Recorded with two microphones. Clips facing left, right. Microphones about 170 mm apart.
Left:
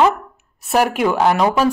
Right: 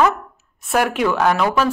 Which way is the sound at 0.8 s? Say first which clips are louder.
Left 2 dB; 40° left (ahead or behind).